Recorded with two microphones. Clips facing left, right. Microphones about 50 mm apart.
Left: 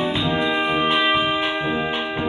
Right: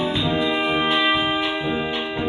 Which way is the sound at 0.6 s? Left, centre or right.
Left.